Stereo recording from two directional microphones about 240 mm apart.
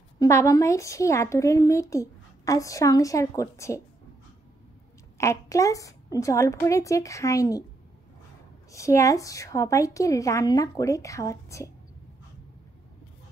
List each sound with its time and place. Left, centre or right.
0.2 s a woman's voice: centre
5.1 s a woman's voice: centre
8.7 s a woman's voice: centre